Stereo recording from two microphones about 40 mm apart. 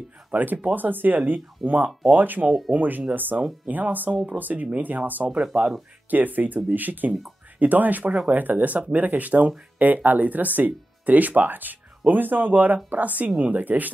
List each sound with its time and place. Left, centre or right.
0.3 s speech: right
1.6 s speech: centre
2.1 s speech: right
5.4 s speech: right
6.0 s speech: right